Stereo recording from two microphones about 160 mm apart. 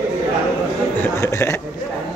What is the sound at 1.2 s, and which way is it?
Speech, 20° left (ahead or behind).